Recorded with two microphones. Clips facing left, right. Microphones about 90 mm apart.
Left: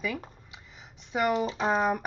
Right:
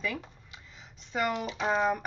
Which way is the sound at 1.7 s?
10° left (ahead or behind).